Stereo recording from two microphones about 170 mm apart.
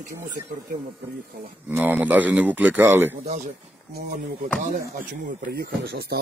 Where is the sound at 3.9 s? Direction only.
55° right (ahead or behind).